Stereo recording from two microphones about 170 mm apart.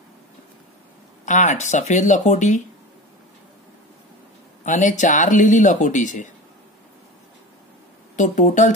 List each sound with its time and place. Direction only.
1.2 s speech: 45° left (ahead or behind)
4.6 s speech: 45° left (ahead or behind)
8.2 s speech: 45° left (ahead or behind)